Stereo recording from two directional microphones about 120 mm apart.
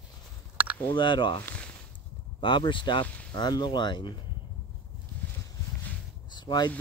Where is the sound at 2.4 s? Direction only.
40° left (ahead or behind).